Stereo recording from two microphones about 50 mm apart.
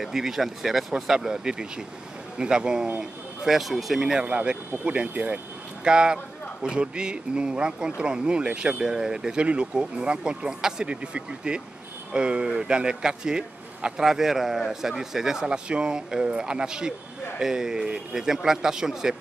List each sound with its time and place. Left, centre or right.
0.0 s speech: centre
3.0 s speech: centre
4.2 s speech: right
5.9 s speech: centre
14.0 s speech: centre